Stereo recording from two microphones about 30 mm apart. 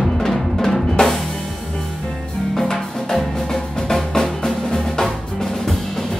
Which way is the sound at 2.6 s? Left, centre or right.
Centre.